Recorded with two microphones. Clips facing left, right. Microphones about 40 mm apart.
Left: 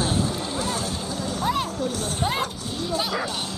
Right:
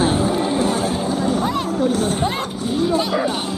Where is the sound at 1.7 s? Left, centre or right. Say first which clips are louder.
Right 9 dB; right.